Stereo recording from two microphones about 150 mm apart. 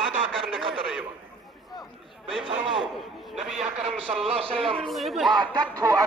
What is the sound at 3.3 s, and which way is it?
Speech, centre (ahead or behind).